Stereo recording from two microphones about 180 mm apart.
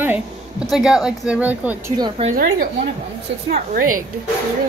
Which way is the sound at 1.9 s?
25° right (ahead or behind).